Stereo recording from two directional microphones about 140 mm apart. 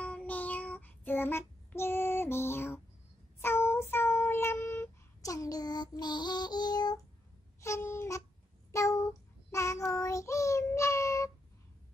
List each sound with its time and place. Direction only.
0.0 s child singing: 10° left (ahead or behind); by 7.0 s 30° left (ahead or behind)
7.6 s a sound: 20° left (ahead or behind)
8.7 s child singing: 20° left (ahead or behind)